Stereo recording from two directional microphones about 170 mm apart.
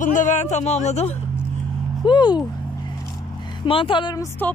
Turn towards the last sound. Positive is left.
turn(degrees=25)  # may be behind; listen again after turning